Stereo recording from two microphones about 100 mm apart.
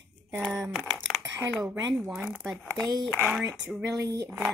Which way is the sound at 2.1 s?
10° right (ahead or behind).